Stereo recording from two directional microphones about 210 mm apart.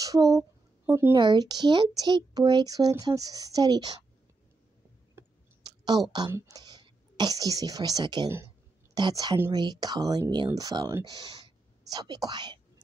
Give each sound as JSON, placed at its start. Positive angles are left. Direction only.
{"t": 0.0, "sound": "speech", "side_deg": -15}
{"t": 0.3, "sound": "a sound", "side_deg": 0}
{"t": 0.9, "sound": "speech", "side_deg": -15}
{"t": 5.1, "sound": "clicking", "side_deg": -20}
{"t": 6.1, "sound": "speech", "side_deg": -15}